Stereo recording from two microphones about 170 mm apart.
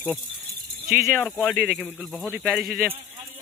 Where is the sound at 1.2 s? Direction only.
5° right (ahead or behind).